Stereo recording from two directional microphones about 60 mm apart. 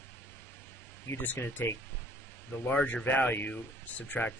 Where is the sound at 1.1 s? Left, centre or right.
Left.